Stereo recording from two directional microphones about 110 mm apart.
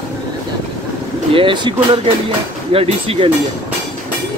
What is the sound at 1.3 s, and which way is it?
Speech, 50° right (ahead or behind).